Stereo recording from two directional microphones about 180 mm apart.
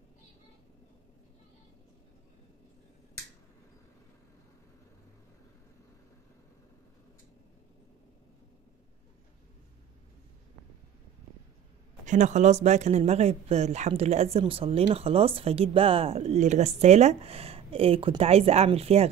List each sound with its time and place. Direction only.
12.1 s speech: 40° right (ahead or behind)